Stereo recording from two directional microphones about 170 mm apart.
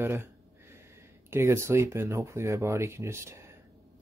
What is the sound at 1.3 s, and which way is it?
Speech, 15° right (ahead or behind).